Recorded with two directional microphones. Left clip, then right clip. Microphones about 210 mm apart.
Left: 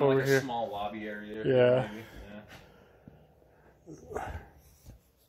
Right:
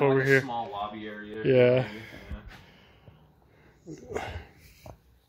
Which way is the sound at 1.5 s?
40° right (ahead or behind).